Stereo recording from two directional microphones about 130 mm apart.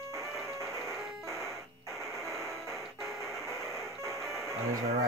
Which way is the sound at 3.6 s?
Centre (ahead or behind).